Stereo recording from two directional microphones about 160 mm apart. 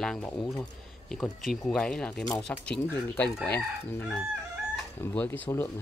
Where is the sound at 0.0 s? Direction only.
5° left (ahead or behind).